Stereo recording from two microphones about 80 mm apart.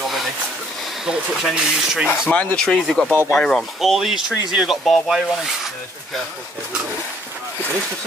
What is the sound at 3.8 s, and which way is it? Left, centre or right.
Speech, centre.